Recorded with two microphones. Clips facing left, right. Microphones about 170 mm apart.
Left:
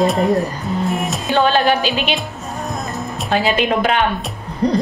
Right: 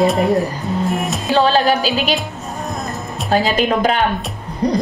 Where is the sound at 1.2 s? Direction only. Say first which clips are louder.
Right 1 dB; 35° right (ahead or behind).